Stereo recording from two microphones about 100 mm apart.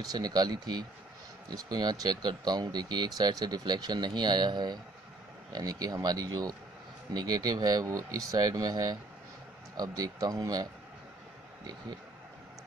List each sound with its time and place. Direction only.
0.0 s speech: 40° right (ahead or behind)